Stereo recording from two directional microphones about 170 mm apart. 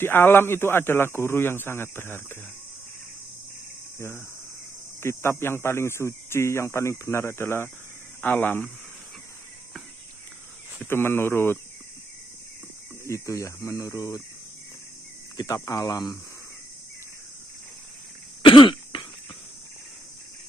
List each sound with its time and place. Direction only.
0.0 s speech: 15° left (ahead or behind)
5.0 s speech: 15° left (ahead or behind)
10.8 s speech: 15° left (ahead or behind)
13.0 s speech: 15° left (ahead or behind)
15.3 s speech: 20° left (ahead or behind)
18.4 s cough: 30° left (ahead or behind)